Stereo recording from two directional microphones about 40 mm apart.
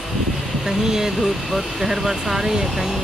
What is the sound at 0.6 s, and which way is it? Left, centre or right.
Speech, centre.